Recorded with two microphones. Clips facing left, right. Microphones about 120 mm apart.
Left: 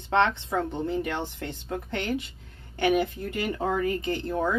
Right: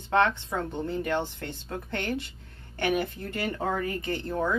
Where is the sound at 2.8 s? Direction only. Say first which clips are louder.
Left 4 dB; 15° left (ahead or behind).